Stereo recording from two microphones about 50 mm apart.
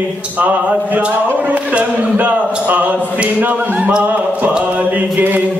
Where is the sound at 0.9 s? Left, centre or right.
Right.